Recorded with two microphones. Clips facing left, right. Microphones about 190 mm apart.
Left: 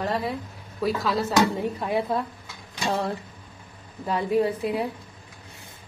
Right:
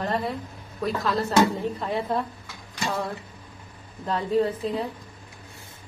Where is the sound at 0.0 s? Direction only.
Centre (ahead or behind).